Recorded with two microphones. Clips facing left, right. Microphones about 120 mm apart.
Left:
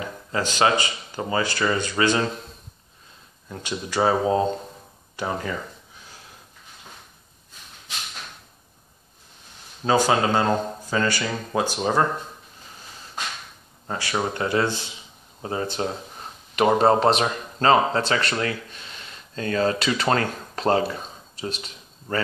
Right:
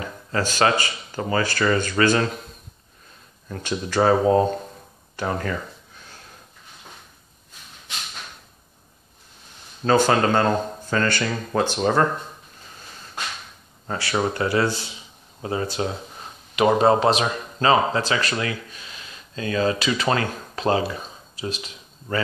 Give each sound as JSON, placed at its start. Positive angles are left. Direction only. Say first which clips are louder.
{"t": 0.0, "sound": "speech", "louder": "right 1 dB", "side_deg": 20}
{"t": 3.5, "sound": "speech", "louder": "right 3 dB", "side_deg": 15}
{"t": 9.8, "sound": "speech", "louder": "right 2 dB", "side_deg": 10}
{"t": 13.8, "sound": "speech", "louder": "right 2 dB", "side_deg": 15}
{"t": 16.5, "sound": "speech", "louder": "right 1 dB", "side_deg": 40}